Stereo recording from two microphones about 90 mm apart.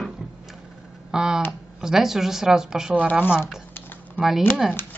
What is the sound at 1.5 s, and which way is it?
Speech, 5° right (ahead or behind).